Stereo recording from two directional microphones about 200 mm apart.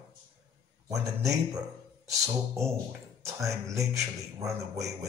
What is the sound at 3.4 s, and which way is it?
Speech, 15° right (ahead or behind).